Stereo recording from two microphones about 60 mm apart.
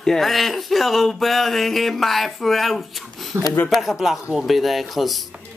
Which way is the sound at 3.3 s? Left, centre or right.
Right.